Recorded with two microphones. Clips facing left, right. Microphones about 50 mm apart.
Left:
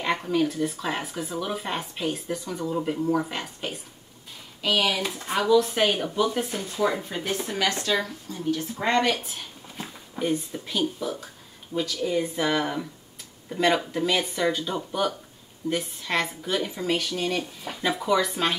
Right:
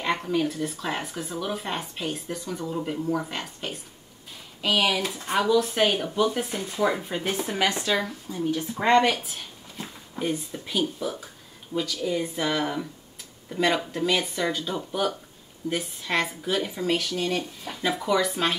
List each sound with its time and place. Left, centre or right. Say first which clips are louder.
0.0 s speech: left 1 dB; centre
4.6 s speech: right 1 dB; centre
9.1 s speech: left 1 dB; centre